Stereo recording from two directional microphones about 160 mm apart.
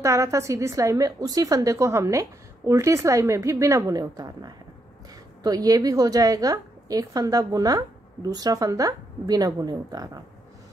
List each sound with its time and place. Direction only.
0.0 s a woman's voice: 20° right (ahead or behind)